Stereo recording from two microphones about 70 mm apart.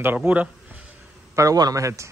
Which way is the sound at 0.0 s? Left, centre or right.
Right.